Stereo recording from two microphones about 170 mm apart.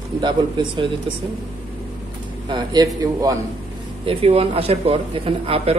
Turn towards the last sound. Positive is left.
turn(degrees=-35)  # may be behind; listen again after turning